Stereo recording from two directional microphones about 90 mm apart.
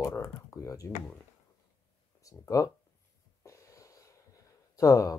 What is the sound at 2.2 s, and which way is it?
Speech, 35° left (ahead or behind).